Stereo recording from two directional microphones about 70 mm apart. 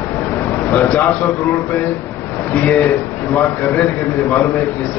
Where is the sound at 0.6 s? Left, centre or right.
Left.